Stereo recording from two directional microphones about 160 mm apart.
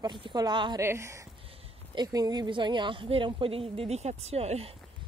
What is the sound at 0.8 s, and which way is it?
A woman's voice, 15° right (ahead or behind).